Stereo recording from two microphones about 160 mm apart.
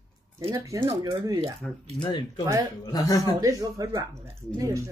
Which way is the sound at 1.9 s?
30° left (ahead or behind).